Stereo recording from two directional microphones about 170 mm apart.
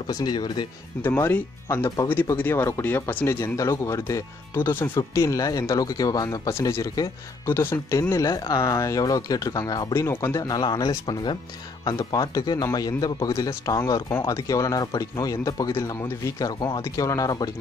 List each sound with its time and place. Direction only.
0.0 s speech: 25° left (ahead or behind)
1.0 s speech: 10° left (ahead or behind)